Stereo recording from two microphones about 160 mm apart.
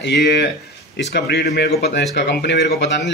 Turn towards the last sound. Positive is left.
turn(degrees=90)